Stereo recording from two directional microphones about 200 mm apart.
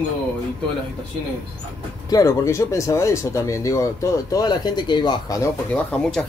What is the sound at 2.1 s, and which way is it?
Speech, 15° left (ahead or behind).